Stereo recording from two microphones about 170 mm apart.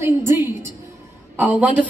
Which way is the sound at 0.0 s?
15° right (ahead or behind).